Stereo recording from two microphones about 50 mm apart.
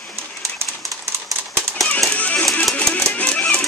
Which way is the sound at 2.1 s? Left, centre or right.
Left.